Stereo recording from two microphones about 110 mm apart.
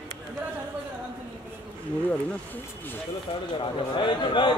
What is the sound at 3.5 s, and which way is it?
A man's voice, 50° left (ahead or behind).